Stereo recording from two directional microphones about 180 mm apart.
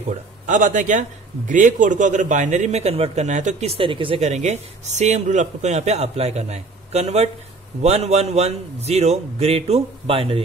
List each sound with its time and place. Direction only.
0.5 s a man's voice: 45° right (ahead or behind)